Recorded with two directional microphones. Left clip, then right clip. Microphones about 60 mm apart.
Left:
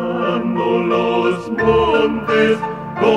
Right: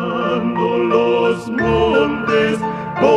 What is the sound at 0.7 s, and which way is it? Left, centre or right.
Music, left.